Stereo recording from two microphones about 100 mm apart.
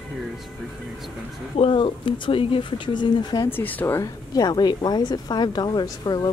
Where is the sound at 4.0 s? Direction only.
40° left (ahead or behind).